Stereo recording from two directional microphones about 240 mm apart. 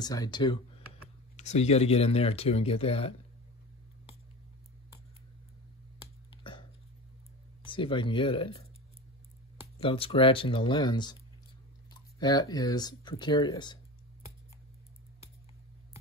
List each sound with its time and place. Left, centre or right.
0.0 s speech: centre
5.9 s finger snapping: left
7.6 s speech: left
9.8 s speech: left